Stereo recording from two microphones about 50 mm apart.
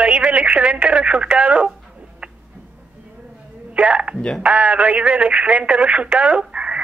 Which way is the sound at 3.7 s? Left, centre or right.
Right.